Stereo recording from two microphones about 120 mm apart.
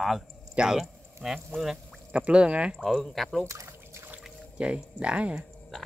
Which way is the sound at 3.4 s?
25° right (ahead or behind).